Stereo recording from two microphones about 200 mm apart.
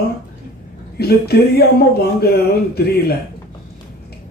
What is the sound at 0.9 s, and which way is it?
Speech, 50° left (ahead or behind).